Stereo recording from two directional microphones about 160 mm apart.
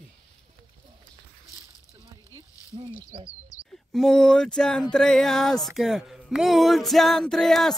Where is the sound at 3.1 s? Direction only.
35° right (ahead or behind).